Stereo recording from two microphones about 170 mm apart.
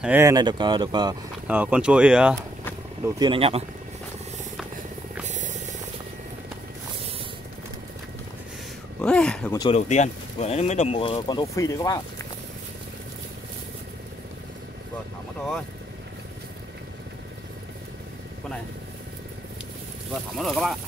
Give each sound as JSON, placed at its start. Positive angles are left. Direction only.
{"t": 0.0, "sound": "speech", "side_deg": -15}
{"t": 1.5, "sound": "speech", "side_deg": -10}
{"t": 3.2, "sound": "speech", "side_deg": -30}
{"t": 5.2, "sound": "music", "side_deg": -45}
{"t": 9.0, "sound": "speech", "side_deg": 5}
{"t": 9.7, "sound": "speech", "side_deg": 40}
{"t": 20.3, "sound": "speech", "side_deg": 0}